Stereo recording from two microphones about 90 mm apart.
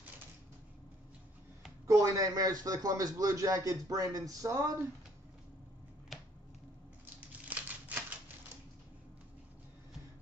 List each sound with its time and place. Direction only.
1.9 s speech: 40° right (ahead or behind)
6.1 s finger snapping: centre (ahead or behind)
7.2 s a sound: 15° right (ahead or behind)